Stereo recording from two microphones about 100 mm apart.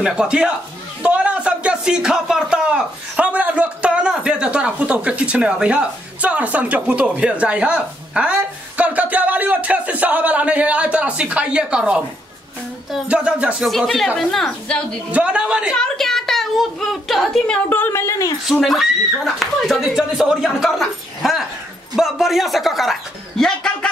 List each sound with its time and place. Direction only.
0.0 s speech: 10° right (ahead or behind)
13.7 s speech: centre (ahead or behind)
15.0 s speech: 10° right (ahead or behind)
15.8 s speech: 5° left (ahead or behind)
17.6 s a woman's voice: 20° left (ahead or behind)
18.5 s a man's voice: centre (ahead or behind)